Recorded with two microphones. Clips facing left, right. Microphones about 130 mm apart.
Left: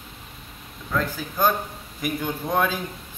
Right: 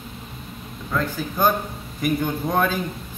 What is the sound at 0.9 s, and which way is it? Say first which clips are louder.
A man's voice: right 1 dB; centre (ahead or behind).